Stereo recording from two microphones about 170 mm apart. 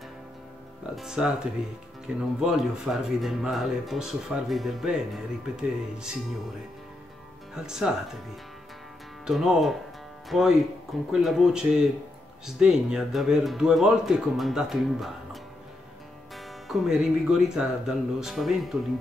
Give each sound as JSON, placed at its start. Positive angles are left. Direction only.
{"t": 0.9, "sound": "speech", "side_deg": -5}
{"t": 7.5, "sound": "speech", "side_deg": -5}
{"t": 9.2, "sound": "speech", "side_deg": 0}
{"t": 16.3, "sound": "speech", "side_deg": 0}